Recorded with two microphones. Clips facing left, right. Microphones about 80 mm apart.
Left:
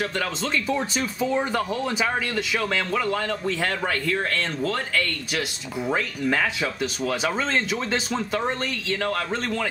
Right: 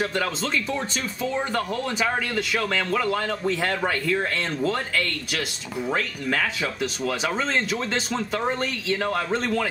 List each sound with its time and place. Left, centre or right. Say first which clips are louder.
0.0 s speech: right 1 dB; centre
5.3 s speech: left 1 dB; centre